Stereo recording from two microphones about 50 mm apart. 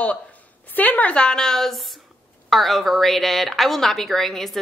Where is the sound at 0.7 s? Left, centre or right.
Left.